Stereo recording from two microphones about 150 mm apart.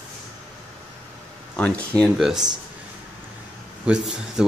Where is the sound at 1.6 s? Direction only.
5° left (ahead or behind).